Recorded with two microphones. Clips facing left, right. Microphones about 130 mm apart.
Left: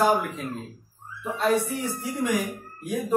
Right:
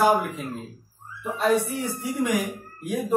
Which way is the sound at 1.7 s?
15° right (ahead or behind).